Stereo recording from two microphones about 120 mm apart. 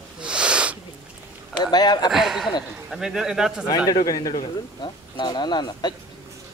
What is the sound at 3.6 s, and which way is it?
Speech, 30° left (ahead or behind).